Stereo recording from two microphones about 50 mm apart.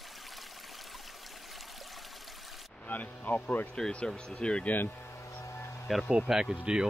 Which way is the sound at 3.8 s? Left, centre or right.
Centre.